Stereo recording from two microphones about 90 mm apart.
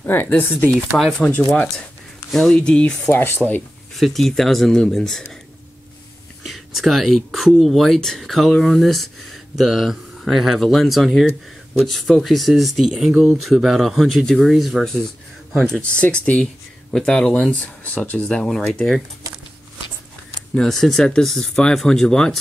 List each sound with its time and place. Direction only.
0.0 s speech: 25° left (ahead or behind)
0.9 s speech: centre (ahead or behind)
2.3 s speech: 10° left (ahead or behind)
3.1 s speech: 25° left (ahead or behind)
4.0 s speech: 5° left (ahead or behind)
6.4 s speech: centre (ahead or behind)
20.5 s speech: 5° left (ahead or behind)